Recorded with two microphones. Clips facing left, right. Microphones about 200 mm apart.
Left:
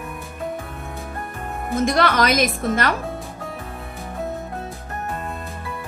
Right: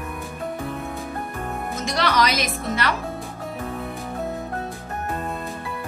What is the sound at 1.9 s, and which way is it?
Speech, 50° left (ahead or behind).